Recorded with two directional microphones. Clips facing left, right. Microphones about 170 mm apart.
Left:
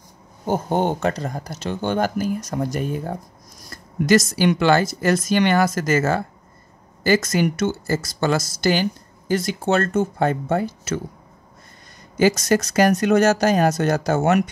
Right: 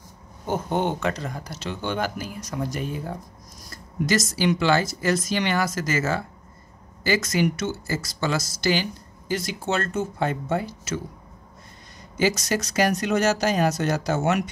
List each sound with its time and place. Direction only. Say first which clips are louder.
0.5 s speech: left 4 dB; 40° left (ahead or behind)
12.2 s speech: left 6 dB; 50° left (ahead or behind)